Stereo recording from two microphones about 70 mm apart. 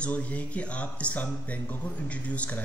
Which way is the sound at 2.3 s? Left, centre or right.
Centre.